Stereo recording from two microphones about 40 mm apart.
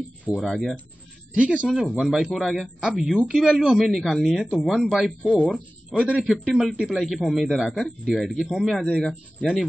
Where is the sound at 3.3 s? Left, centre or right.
Centre.